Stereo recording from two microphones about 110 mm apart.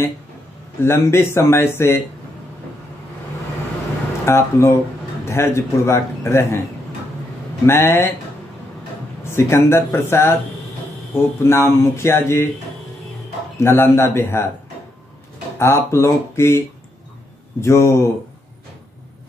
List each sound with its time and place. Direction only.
0.7 s speech: 25° left (ahead or behind)
4.3 s speech: 25° left (ahead or behind)
7.6 s speech: 20° left (ahead or behind)
9.2 s speech: 25° left (ahead or behind)
13.6 s speech: 25° left (ahead or behind)
15.6 s speech: 25° left (ahead or behind)